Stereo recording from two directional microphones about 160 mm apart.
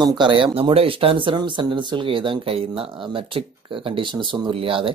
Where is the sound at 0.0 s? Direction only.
30° right (ahead or behind).